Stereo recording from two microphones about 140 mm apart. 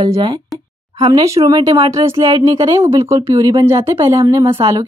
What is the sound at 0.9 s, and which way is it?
Speech, 25° right (ahead or behind).